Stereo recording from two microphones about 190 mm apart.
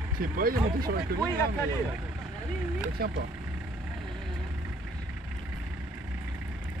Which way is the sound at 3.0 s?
55° right (ahead or behind).